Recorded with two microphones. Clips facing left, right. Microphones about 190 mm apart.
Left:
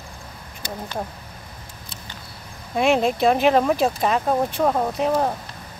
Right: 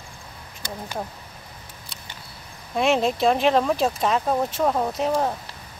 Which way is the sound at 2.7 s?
Centre (ahead or behind).